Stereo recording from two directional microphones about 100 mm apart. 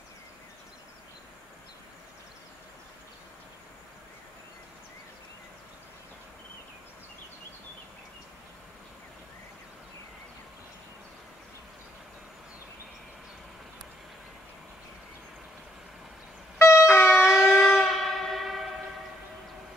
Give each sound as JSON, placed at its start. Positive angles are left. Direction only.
{"t": 16.5, "sound": "music", "side_deg": 25}
{"t": 17.3, "sound": "train", "side_deg": 0}